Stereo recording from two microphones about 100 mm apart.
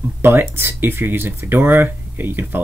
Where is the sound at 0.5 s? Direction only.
25° right (ahead or behind).